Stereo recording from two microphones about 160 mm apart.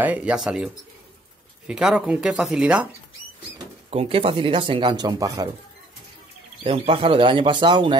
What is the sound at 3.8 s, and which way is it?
Speech, 35° right (ahead or behind).